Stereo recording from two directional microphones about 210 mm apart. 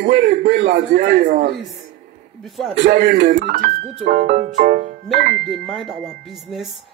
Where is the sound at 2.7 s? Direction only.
50° right (ahead or behind).